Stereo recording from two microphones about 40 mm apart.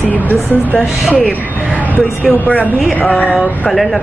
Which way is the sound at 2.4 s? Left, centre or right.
Left.